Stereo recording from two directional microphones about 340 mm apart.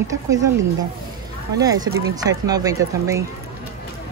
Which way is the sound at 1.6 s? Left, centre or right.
Centre.